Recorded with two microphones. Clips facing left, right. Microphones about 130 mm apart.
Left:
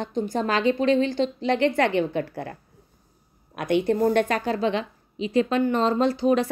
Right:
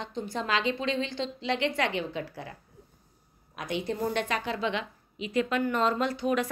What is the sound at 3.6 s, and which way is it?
A woman's voice, 60° left (ahead or behind).